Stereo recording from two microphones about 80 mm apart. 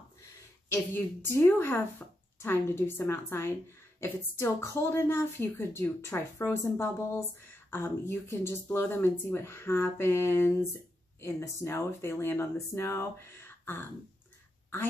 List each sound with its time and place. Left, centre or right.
0.7 s a woman's voice: left